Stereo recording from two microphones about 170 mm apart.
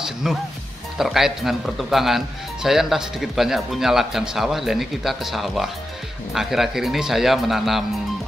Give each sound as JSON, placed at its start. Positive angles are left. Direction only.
{"t": 0.0, "sound": "music", "side_deg": -5}
{"t": 0.9, "sound": "speech", "side_deg": 0}